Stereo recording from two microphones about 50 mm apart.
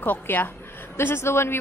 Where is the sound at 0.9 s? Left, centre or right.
Left.